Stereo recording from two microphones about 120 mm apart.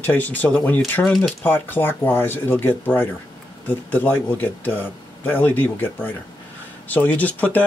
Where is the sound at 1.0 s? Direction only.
Centre (ahead or behind).